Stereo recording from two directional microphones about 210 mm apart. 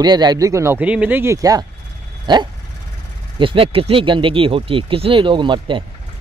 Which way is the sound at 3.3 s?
25° right (ahead or behind).